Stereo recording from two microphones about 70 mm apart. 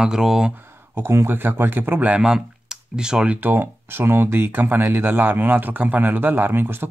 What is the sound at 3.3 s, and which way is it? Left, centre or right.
Speech, right.